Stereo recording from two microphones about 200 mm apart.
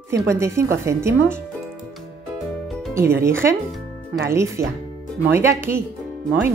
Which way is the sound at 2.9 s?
15° right (ahead or behind).